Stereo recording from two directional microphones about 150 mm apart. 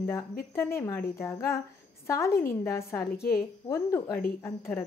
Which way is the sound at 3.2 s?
80° left.